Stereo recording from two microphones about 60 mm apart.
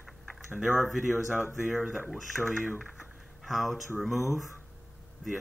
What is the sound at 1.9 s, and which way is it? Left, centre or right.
Speech, centre.